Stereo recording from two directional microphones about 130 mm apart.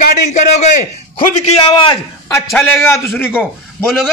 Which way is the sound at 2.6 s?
20° left (ahead or behind).